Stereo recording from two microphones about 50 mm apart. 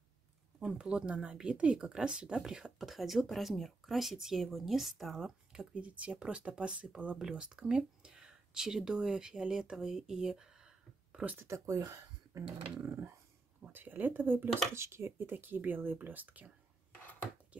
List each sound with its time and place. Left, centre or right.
0.7 s speech: centre
5.6 s speech: right
7.2 s speech: centre
11.4 s speech: right
12.8 s dog: right
13.7 s speech: right
14.7 s speech: right
17.0 s dishes: left